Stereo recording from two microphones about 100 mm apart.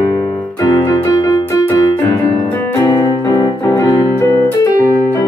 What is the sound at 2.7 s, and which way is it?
Piano, 30° left (ahead or behind).